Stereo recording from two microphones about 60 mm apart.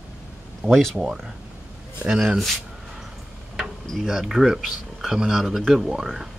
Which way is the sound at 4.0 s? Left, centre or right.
Centre.